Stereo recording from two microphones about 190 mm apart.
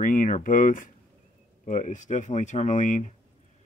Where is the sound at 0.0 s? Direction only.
45° left (ahead or behind).